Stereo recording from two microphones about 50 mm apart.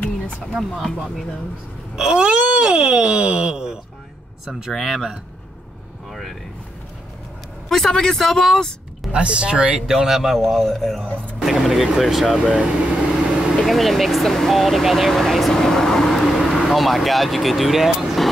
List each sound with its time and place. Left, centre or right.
0.5 s speech: centre
6.0 s vehicle: centre
7.7 s speech: centre
9.1 s speech: centre
9.8 s speech: centre
12.5 s vehicle: centre
13.6 s speech: centre